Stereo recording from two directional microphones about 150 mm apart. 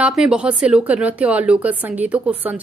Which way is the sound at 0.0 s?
5° right (ahead or behind).